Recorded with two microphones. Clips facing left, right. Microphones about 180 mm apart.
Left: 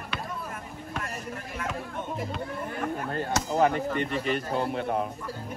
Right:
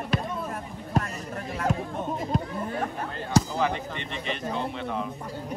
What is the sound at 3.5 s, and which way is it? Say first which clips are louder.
Speech: left 4 dB; 45° left (ahead or behind).